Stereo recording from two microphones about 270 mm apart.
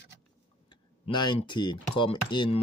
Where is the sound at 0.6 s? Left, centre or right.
Centre.